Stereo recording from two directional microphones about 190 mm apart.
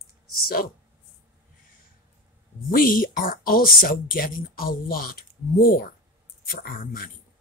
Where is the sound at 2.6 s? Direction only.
50° left (ahead or behind).